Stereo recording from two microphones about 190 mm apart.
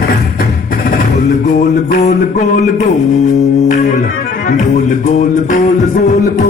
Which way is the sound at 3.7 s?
45° left (ahead or behind).